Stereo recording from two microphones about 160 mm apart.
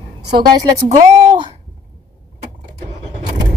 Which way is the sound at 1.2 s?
35° right (ahead or behind).